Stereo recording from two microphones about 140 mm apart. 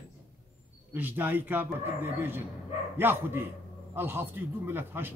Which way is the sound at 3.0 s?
15° right (ahead or behind).